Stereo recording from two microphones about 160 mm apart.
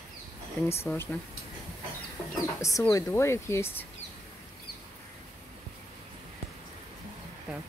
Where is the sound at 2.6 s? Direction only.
20° left (ahead or behind).